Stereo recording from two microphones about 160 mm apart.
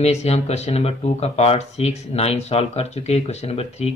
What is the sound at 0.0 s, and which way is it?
Speech, 40° left (ahead or behind).